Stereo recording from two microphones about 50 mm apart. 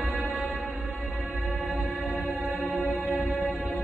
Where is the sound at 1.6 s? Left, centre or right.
Right.